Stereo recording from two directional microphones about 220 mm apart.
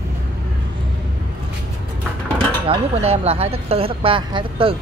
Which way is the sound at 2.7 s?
25° right (ahead or behind).